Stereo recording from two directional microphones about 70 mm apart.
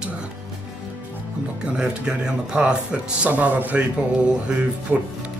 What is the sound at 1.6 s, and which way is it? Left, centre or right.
Speech, centre.